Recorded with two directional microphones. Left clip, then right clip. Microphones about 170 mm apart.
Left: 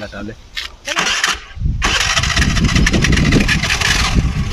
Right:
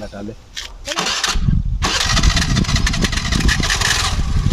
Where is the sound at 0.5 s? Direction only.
5° left (ahead or behind).